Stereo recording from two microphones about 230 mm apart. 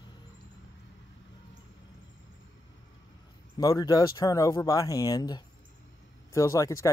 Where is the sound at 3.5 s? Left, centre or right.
Centre.